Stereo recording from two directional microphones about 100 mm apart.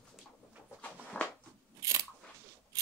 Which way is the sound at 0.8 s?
15° left (ahead or behind).